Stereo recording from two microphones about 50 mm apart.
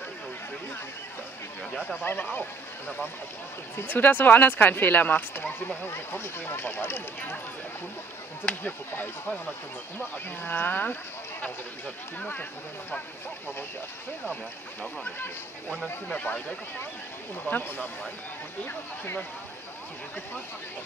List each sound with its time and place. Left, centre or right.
2.0 s speech: left
3.7 s speech: left
5.9 s speech: left
8.6 s speech: left
12.2 s speech: left
16.1 s speech: left
17.5 s speech: left